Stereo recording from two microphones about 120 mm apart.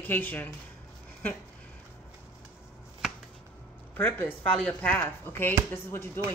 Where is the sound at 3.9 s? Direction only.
15° left (ahead or behind).